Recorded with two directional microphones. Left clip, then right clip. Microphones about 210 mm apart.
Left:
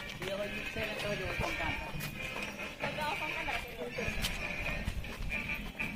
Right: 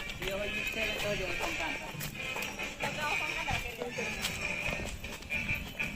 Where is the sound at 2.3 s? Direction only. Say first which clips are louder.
Right 3 dB; 45° right (ahead or behind).